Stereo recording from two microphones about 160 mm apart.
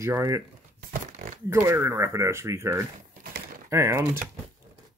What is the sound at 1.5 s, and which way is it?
Speech, 15° right (ahead or behind).